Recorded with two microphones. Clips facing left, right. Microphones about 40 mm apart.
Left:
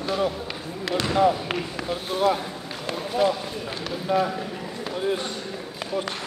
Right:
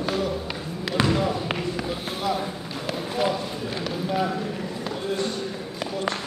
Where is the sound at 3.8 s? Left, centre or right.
Centre.